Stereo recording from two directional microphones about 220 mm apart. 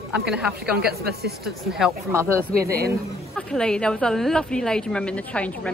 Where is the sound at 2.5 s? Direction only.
45° right (ahead or behind).